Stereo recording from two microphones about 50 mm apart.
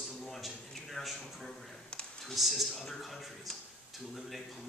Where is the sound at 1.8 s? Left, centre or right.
Centre.